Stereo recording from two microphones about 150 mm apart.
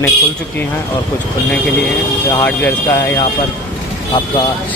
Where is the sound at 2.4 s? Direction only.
15° left (ahead or behind).